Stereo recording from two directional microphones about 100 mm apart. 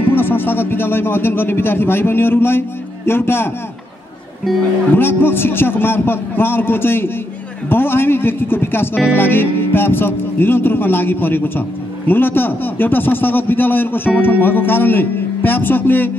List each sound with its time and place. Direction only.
0.1 s a man's voice: 20° left (ahead or behind)
4.9 s a man's voice: 20° left (ahead or behind)